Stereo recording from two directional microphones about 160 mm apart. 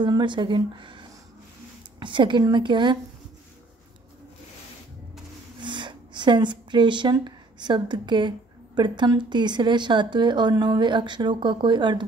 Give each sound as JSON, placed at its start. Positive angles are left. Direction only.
{"t": 0.0, "sound": "speech", "side_deg": -30}
{"t": 5.6, "sound": "speech", "side_deg": -30}